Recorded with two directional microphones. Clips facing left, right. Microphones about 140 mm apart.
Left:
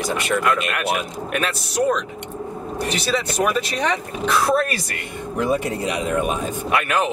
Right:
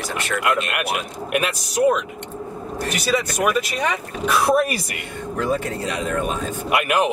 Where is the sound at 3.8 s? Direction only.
10° right (ahead or behind).